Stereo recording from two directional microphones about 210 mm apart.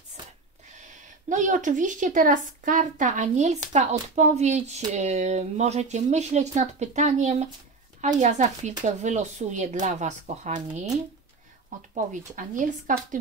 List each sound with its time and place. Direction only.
1.3 s speech: 35° right (ahead or behind)
11.9 s speech: 35° right (ahead or behind)